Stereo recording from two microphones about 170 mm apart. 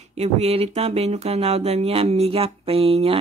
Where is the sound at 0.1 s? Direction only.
40° right (ahead or behind).